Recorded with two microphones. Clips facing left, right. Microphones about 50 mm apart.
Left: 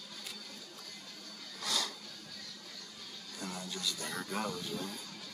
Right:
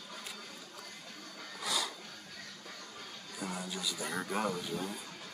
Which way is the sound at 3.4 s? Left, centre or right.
Centre.